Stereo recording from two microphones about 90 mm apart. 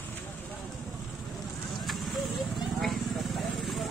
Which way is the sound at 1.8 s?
Centre (ahead or behind).